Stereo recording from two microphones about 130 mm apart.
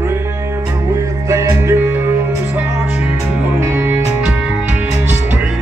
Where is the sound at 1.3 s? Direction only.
25° right (ahead or behind).